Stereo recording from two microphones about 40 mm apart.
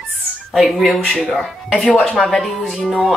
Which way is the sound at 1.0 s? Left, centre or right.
Centre.